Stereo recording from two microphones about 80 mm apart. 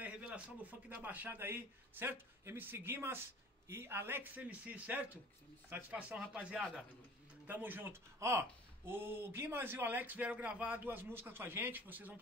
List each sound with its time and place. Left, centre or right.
0.0 s speech: centre
5.7 s speech: right
6.1 s speech: centre
7.4 s speech: right